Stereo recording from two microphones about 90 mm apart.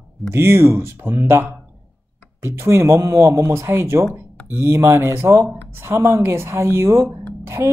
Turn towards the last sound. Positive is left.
turn(degrees=-30)  # may be behind; listen again after turning